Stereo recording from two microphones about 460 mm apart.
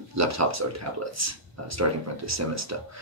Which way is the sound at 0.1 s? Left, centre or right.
Right.